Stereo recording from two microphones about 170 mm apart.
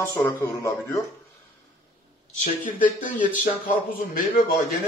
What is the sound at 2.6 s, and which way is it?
Speech, 50° left (ahead or behind).